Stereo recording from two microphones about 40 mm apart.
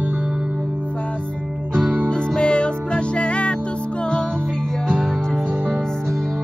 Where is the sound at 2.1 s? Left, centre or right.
Left.